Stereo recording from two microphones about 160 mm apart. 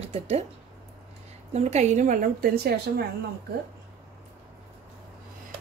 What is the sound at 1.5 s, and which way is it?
A woman's voice, 45° right (ahead or behind).